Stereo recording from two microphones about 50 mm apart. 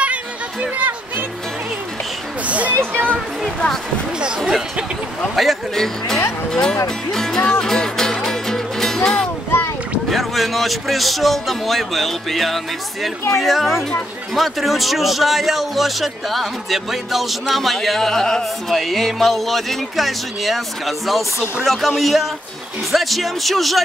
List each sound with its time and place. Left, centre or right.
0.0 s chatter: right
2.4 s a sound: right
2.7 s speech: right
3.4 s music: centre
5.3 s a man's voice: centre
6.5 s music: centre
10.0 s a man's voice: centre